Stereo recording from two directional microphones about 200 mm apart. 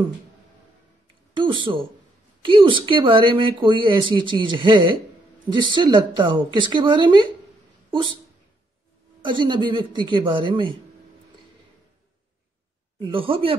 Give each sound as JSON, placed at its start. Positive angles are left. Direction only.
{"t": 1.4, "sound": "speech", "side_deg": -25}
{"t": 9.2, "sound": "speech", "side_deg": -25}
{"t": 13.0, "sound": "speech", "side_deg": -25}